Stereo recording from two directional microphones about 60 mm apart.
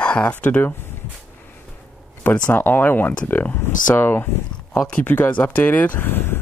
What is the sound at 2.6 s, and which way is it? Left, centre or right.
Speech, left.